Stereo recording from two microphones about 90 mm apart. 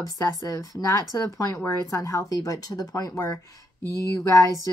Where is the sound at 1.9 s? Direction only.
35° left (ahead or behind).